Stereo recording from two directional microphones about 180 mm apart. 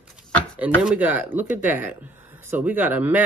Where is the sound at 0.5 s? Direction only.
10° right (ahead or behind).